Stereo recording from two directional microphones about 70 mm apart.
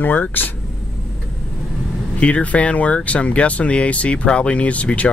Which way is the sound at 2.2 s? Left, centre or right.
Centre.